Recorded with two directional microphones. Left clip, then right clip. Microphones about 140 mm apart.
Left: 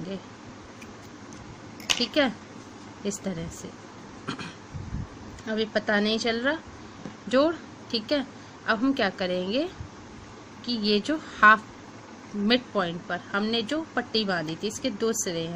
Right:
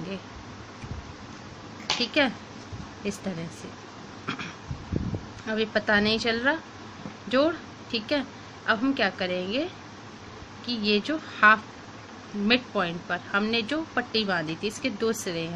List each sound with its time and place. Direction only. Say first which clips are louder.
2.0 s speech: right 2 dB; 25° left (ahead or behind)
5.5 s a woman's voice: right 2 dB; 20° left (ahead or behind)